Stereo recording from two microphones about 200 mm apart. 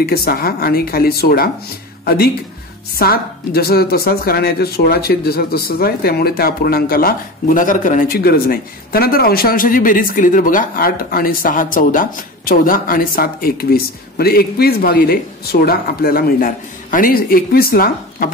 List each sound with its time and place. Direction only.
0.0 s a woman's voice: 50° left (ahead or behind)